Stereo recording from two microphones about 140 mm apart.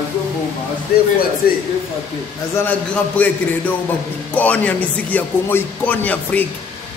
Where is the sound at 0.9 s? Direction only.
90° left.